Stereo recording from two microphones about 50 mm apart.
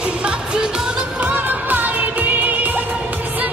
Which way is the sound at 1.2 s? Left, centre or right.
Right.